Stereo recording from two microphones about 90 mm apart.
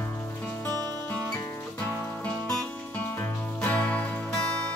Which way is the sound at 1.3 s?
30° left (ahead or behind).